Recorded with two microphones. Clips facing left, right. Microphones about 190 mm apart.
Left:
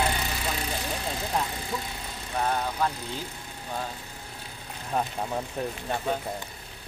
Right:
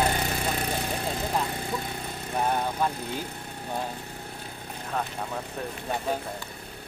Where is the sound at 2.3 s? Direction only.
10° right (ahead or behind).